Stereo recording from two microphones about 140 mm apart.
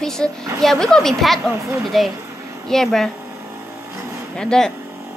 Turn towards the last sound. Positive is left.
turn(degrees=5)  # may be behind; listen again after turning